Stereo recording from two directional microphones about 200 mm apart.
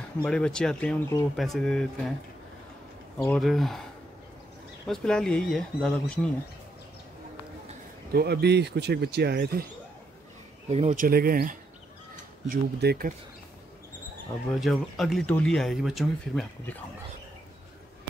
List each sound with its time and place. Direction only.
0.2 s speech: 5° left (ahead or behind)
3.2 s speech: 5° left (ahead or behind)
4.8 s speech: 5° left (ahead or behind)
8.1 s speech: 55° right (ahead or behind)
10.7 s speech: 35° right (ahead or behind)
14.5 s speech: centre (ahead or behind)